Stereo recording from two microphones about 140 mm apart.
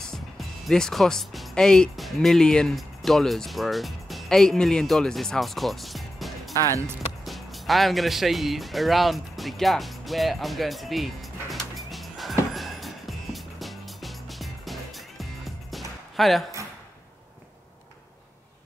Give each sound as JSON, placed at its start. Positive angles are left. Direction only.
{"t": 0.7, "sound": "speech", "side_deg": 0}
{"t": 6.5, "sound": "speech", "side_deg": 20}
{"t": 7.2, "sound": "music", "side_deg": 0}